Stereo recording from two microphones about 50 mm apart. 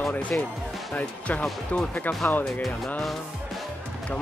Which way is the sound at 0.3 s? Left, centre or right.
Left.